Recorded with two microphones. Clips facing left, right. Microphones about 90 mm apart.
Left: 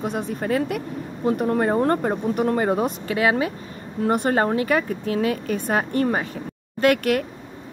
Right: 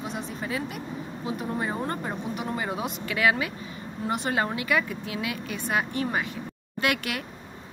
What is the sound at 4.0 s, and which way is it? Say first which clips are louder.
A woman's voice: left 7 dB; 50° left (ahead or behind).